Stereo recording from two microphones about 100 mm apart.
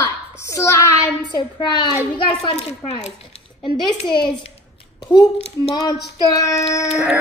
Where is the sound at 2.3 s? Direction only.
90° left.